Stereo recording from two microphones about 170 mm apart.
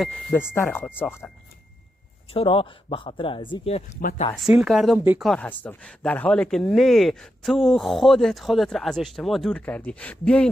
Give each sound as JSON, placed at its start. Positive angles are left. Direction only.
{"t": 0.0, "sound": "speech", "side_deg": 0}
{"t": 0.7, "sound": "speech", "side_deg": 10}
{"t": 2.3, "sound": "speech", "side_deg": 30}
{"t": 4.4, "sound": "speech", "side_deg": 0}
{"t": 5.3, "sound": "speech", "side_deg": 10}